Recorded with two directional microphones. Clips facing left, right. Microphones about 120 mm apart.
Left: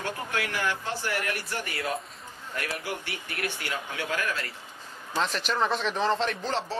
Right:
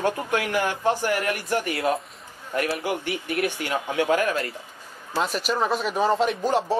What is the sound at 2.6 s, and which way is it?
Speech, 15° right (ahead or behind).